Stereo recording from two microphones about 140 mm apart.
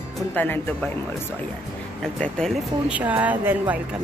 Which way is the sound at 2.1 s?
5° left (ahead or behind).